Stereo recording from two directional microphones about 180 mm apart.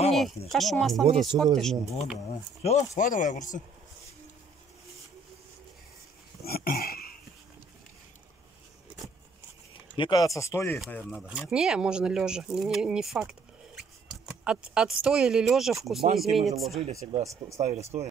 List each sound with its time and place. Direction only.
0.5 s speech: centre (ahead or behind)
1.0 s speech: 30° right (ahead or behind)
1.3 s speech: centre (ahead or behind)
2.6 s speech: 35° left (ahead or behind)
6.4 s a sound: 55° left (ahead or behind)
9.9 s speech: 25° left (ahead or behind); by 11.1 s 10° left (ahead or behind)
11.1 s speech: 5° right (ahead or behind)
17.2 s speech: 15° right (ahead or behind)
17.6 s speech: 35° right (ahead or behind)